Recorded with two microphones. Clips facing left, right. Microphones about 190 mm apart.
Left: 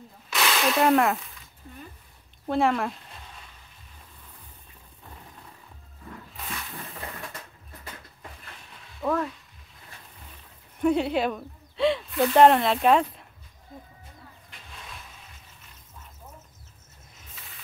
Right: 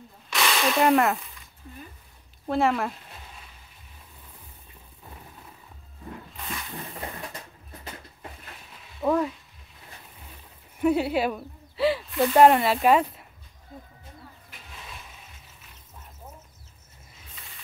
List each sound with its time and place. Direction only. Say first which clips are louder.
0.3 s a sound: even; centre (ahead or behind)
2.4 s speech: even; centre (ahead or behind)
9.0 s speech: right 3 dB; 15° right (ahead or behind)
10.8 s speech: even; 5° right (ahead or behind)